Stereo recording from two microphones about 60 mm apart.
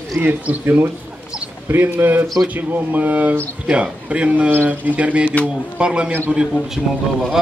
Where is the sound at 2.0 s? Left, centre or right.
Right; by 6.1 s centre.